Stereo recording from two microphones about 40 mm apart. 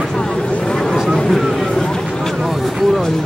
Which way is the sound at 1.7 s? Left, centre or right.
Centre.